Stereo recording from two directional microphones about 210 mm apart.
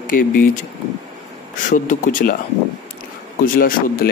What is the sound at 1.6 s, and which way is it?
Speech, 40° left (ahead or behind).